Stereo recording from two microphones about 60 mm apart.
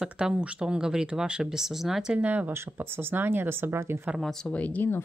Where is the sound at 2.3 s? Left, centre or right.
Right.